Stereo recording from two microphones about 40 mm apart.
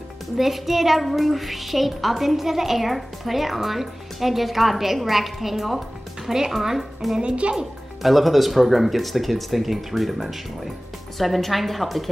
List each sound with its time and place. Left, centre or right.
0.4 s a child's voice: centre
7.2 s a child's voice: right
8.0 s a child's voice: centre